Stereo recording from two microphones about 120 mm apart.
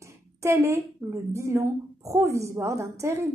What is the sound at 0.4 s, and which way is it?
A woman's voice, 25° right (ahead or behind).